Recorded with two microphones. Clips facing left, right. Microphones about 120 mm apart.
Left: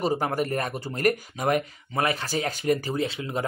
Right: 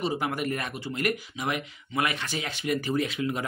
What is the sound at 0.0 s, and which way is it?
Speech, 40° left (ahead or behind).